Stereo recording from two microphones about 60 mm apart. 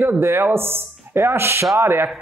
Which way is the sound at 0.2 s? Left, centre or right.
Right.